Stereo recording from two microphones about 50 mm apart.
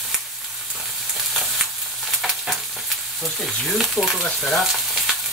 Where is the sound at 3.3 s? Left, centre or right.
Centre.